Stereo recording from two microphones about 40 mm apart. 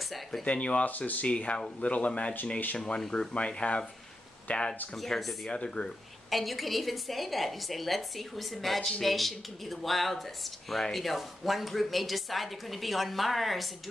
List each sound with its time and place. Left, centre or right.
0.4 s speech: left
0.8 s speech: left
1.2 s speech: left
4.9 s speech: centre
5.5 s speech: left
6.3 s speech: centre